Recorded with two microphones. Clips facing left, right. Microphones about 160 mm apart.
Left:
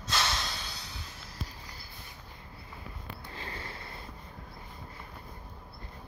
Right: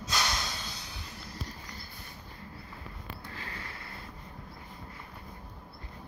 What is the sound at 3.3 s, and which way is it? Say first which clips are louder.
Snort: left 2 dB; 25° left (ahead or behind).